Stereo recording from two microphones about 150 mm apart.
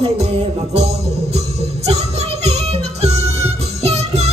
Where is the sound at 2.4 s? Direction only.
45° right (ahead or behind).